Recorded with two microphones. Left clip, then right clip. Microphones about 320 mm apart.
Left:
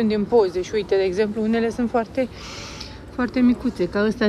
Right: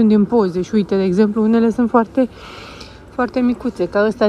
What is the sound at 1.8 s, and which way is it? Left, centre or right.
Speech, right.